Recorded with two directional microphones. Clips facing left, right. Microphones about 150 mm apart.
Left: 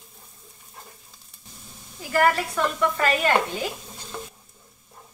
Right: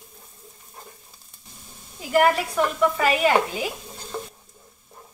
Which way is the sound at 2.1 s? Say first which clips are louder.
Right 2 dB; 20° right (ahead or behind).